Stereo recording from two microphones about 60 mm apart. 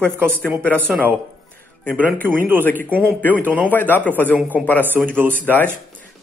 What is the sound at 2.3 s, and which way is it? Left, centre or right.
A man's voice, right.